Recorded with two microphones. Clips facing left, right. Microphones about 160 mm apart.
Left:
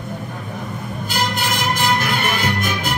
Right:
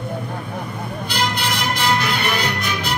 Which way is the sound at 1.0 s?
45° left (ahead or behind).